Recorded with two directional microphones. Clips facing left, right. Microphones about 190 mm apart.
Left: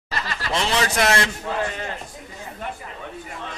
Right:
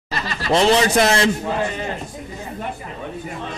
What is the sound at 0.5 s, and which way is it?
Speech, 35° right (ahead or behind).